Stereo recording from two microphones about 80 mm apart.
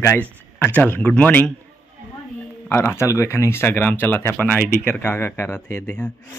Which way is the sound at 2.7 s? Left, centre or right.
Left.